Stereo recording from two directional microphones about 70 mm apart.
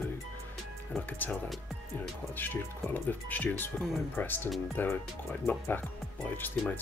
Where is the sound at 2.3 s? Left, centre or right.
Left.